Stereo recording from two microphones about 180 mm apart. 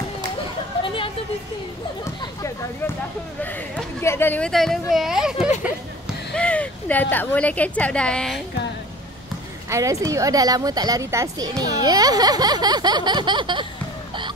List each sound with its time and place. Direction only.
0.8 s a sound: 30° left (ahead or behind)
3.4 s speech: 10° left (ahead or behind)
9.7 s a woman's voice: 15° right (ahead or behind)